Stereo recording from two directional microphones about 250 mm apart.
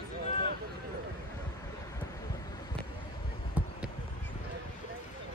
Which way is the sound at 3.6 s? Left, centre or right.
Centre.